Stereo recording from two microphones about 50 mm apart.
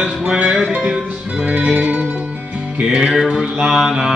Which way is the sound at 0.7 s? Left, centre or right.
Right.